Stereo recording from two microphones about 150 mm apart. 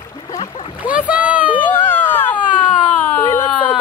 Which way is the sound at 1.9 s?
10° left (ahead or behind).